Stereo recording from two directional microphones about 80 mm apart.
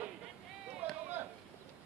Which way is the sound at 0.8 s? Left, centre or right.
Right.